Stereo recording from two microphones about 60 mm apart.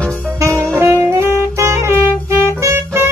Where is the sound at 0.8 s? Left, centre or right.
Right.